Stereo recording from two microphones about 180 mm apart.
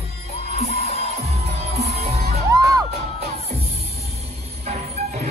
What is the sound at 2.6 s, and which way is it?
Music, 20° right (ahead or behind).